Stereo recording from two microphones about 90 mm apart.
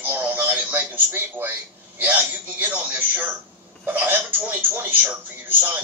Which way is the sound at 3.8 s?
20° right (ahead or behind).